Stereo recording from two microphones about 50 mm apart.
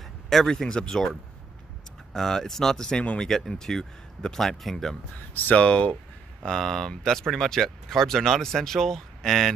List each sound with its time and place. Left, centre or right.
0.0 s a sound: centre
0.8 s speech: centre
2.1 s speech: centre
5.4 s speech: left
6.4 s speech: centre